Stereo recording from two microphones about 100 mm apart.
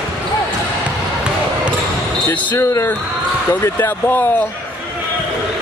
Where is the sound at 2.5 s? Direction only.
30° left (ahead or behind).